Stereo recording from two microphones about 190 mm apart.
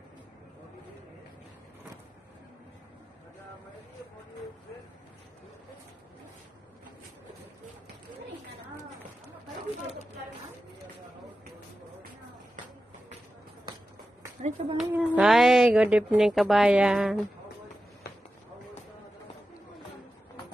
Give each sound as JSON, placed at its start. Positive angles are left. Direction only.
{"t": 14.4, "sound": "speech", "side_deg": -35}
{"t": 14.8, "sound": "a woman's voice", "side_deg": -5}